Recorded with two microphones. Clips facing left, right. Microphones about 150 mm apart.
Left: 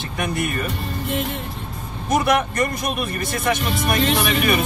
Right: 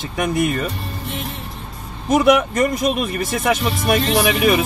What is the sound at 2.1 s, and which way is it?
Speech, 90° right.